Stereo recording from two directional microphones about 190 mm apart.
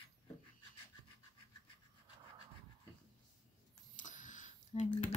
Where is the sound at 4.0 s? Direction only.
40° left (ahead or behind).